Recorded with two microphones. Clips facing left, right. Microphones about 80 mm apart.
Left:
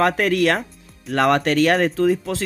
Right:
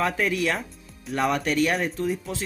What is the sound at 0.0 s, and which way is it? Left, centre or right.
Speech, left.